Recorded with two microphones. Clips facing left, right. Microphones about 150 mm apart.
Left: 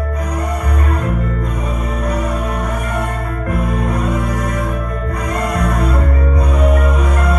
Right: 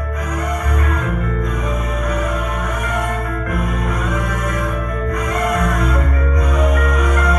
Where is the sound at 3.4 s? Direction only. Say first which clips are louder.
Left 7 dB; 30° left (ahead or behind).